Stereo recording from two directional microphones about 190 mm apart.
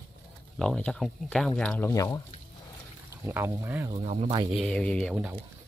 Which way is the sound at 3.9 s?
35° right (ahead or behind).